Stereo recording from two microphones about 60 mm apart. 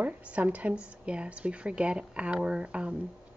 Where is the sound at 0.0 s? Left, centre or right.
Right.